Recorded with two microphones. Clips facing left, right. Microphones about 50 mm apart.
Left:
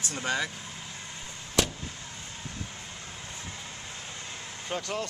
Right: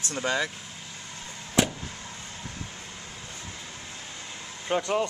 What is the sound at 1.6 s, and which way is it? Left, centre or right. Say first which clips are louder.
Vehicle: right 3 dB; centre.